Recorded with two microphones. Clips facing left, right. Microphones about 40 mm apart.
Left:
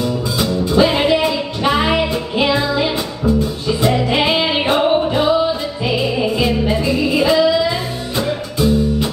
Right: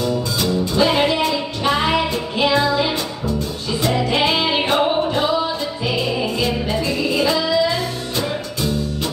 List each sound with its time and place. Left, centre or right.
0.0 s music: centre